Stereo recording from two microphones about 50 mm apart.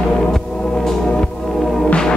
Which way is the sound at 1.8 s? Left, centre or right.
Centre.